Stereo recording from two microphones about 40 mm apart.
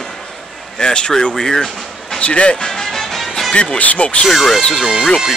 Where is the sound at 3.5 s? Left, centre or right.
Left.